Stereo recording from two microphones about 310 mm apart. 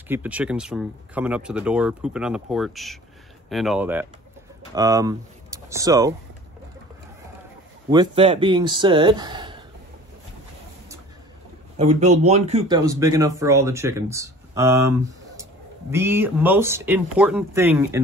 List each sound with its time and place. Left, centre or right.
0.1 s speech: centre
7.9 s speech: centre
11.7 s speech: right